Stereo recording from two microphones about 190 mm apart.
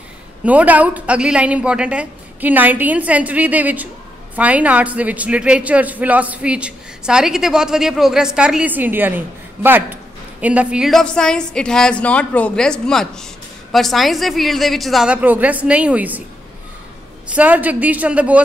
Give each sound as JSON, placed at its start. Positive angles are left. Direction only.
{"t": 0.5, "sound": "a man's voice", "side_deg": -10}
{"t": 17.3, "sound": "a man's voice", "side_deg": -10}